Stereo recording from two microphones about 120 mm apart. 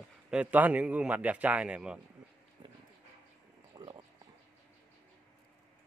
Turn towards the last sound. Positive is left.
turn(degrees=-35)  # may be behind; listen again after turning